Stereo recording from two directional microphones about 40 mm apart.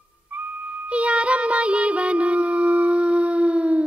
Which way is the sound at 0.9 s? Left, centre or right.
Right.